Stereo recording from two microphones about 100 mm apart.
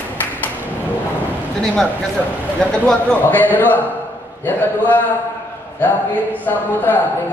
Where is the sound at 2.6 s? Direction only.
10° left (ahead or behind).